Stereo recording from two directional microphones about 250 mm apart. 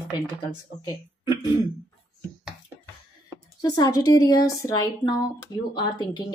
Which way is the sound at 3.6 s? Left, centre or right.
Centre.